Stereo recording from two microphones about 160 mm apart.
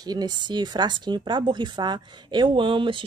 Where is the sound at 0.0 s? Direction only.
25° right (ahead or behind).